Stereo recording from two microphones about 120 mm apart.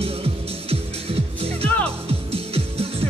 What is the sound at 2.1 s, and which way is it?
Music, 55° right (ahead or behind).